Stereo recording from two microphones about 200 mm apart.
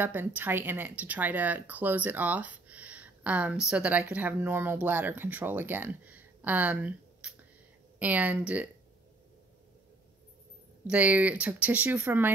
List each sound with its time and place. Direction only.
0.0 s speech: 10° right (ahead or behind)
10.9 s speech: 5° right (ahead or behind)